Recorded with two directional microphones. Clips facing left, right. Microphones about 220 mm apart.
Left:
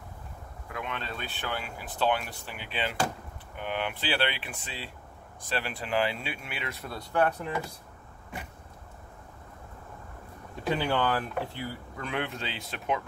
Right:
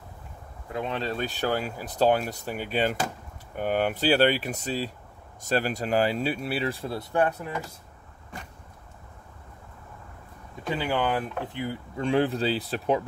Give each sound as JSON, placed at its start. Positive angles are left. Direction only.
{"t": 0.7, "sound": "speech", "side_deg": -30}
{"t": 10.8, "sound": "speech", "side_deg": -10}